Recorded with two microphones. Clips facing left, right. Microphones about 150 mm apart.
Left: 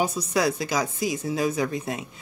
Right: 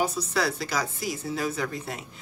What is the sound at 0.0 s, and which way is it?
A woman's voice, 15° left (ahead or behind).